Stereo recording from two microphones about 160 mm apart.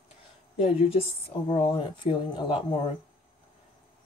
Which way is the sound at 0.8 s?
40° left (ahead or behind).